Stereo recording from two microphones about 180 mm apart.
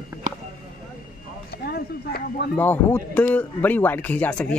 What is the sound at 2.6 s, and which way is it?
Speech, 10° left (ahead or behind).